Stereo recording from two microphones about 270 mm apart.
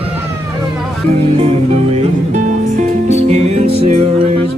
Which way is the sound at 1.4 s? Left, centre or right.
Right.